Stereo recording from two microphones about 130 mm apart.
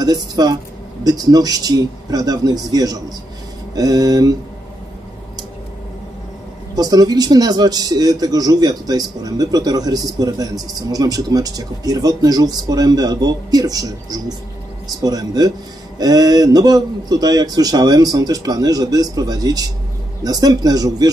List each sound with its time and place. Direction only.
0.0 s a man's voice: 30° right (ahead or behind)
6.7 s a man's voice: 30° right (ahead or behind)